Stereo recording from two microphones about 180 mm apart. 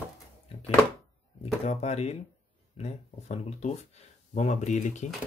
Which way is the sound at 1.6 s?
40° left (ahead or behind).